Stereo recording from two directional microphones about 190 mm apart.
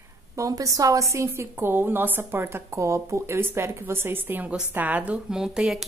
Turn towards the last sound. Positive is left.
turn(degrees=0)  # may be behind; listen again after turning